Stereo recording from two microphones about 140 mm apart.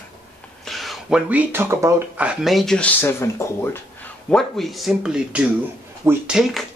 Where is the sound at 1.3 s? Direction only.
15° right (ahead or behind).